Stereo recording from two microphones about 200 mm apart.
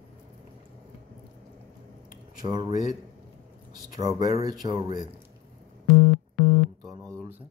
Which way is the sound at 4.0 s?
20° right (ahead or behind).